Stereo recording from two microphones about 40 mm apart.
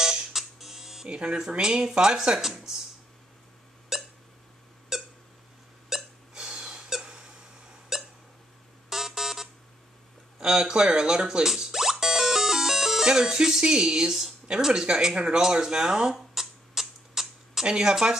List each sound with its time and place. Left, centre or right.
0.0 s music: centre
1.0 s speech: right
3.9 s hiccup: centre
4.9 s squeak: centre
5.9 s hiccup: centre
6.3 s a sound: centre
7.9 s hiccup: centre
8.9 s buzzer: centre
10.4 s speech: centre
11.4 s music: centre
14.7 s speech: centre
15.6 s a sound: centre
17.6 s speech: centre